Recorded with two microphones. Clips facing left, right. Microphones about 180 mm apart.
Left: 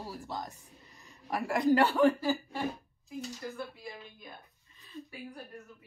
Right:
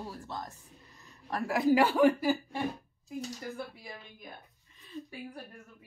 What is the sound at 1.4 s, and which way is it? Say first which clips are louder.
A woman's voice: right 1 dB; 5° right (ahead or behind).